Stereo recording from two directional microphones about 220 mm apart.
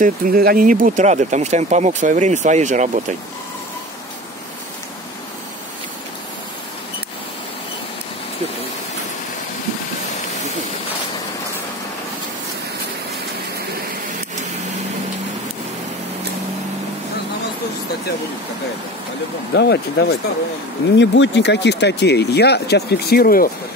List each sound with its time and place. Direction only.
0.0 s speech: 40° right (ahead or behind)
19.5 s speech: 50° left (ahead or behind)